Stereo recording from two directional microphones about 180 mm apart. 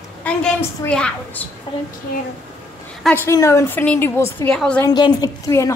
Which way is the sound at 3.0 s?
10° left (ahead or behind).